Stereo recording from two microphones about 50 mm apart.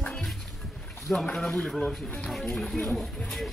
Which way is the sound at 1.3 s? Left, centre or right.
Centre.